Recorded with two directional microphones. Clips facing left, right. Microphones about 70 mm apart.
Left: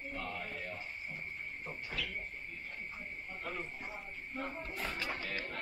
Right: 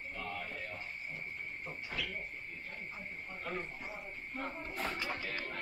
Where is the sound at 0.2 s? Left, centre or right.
Centre.